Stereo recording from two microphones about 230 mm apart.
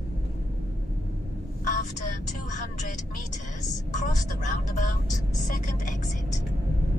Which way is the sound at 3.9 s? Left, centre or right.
Left.